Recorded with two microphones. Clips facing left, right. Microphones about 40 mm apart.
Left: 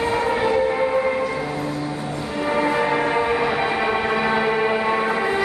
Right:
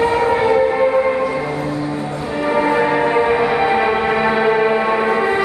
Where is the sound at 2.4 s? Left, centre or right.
Centre.